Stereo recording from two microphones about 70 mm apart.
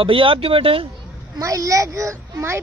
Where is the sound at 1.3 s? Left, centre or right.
Right.